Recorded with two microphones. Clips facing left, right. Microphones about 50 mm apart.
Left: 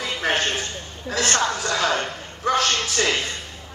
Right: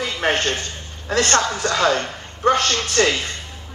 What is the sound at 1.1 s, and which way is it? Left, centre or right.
A man's voice, right.